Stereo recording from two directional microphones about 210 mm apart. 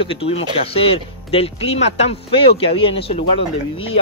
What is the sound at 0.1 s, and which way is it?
Speech, 30° left (ahead or behind).